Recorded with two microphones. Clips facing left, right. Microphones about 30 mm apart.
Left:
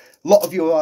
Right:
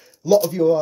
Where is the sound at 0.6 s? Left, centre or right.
Left.